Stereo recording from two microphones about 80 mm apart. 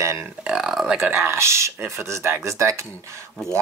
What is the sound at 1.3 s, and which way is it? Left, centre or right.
Speech, right.